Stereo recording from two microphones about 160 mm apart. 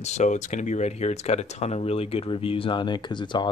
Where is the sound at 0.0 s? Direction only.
45° left (ahead or behind).